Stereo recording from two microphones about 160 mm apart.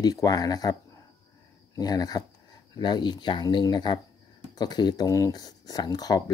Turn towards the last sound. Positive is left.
turn(degrees=25)  # may be behind; listen again after turning